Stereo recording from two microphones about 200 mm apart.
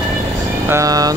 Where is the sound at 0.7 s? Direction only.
15° right (ahead or behind).